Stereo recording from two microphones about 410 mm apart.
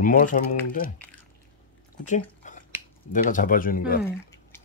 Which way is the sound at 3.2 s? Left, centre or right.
Centre.